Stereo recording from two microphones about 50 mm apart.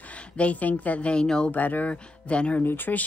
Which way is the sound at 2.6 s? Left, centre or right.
Left.